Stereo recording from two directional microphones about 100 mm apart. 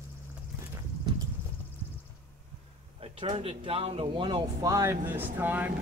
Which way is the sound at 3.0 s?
65° right (ahead or behind).